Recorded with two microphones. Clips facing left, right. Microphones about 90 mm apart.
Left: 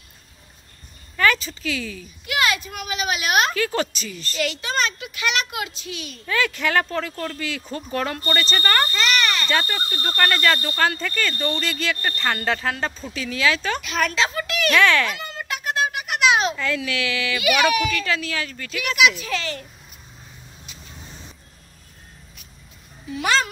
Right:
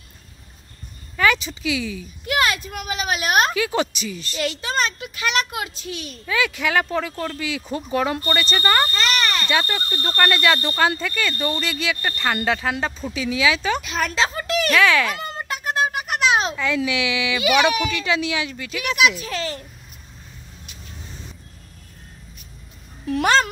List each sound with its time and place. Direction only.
1.1 s speech: 10° right (ahead or behind)
2.2 s a child's voice: 35° right (ahead or behind)
3.5 s speech: 10° right (ahead or behind)
4.4 s a child's voice: 25° right (ahead or behind)
6.2 s speech: 5° right (ahead or behind)
8.9 s a sound: 30° right (ahead or behind)
9.5 s speech: 10° right (ahead or behind)
13.8 s speech: 25° right (ahead or behind)
14.7 s a child's voice: 5° right (ahead or behind)
15.1 s a sound: 40° right (ahead or behind)
16.5 s speech: 15° right (ahead or behind)
18.9 s a child's voice: 30° right (ahead or behind)
23.0 s a sound: 55° right (ahead or behind)